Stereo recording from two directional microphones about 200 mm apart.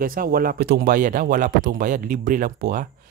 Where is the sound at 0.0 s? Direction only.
45° right (ahead or behind).